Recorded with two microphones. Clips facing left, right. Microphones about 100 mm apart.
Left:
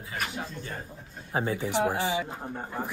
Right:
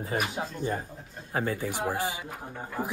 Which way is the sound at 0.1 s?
15° right (ahead or behind).